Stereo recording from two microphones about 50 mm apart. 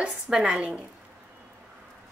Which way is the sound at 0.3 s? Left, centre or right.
Centre.